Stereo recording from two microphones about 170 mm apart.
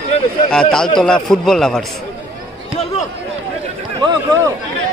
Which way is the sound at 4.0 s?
25° right (ahead or behind).